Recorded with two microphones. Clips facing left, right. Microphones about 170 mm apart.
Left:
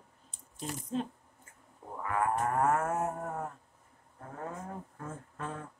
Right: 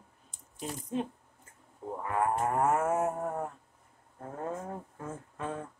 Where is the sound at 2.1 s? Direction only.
25° right (ahead or behind).